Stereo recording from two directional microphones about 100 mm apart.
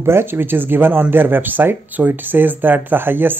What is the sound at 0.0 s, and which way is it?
Speech, 25° right (ahead or behind).